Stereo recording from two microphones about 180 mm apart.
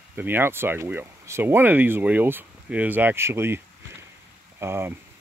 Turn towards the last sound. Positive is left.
turn(degrees=-15)  # may be behind; listen again after turning